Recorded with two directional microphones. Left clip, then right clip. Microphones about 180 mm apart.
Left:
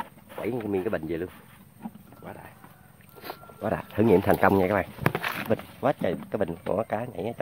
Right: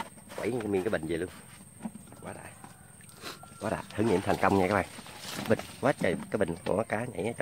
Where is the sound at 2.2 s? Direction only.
20° left (ahead or behind).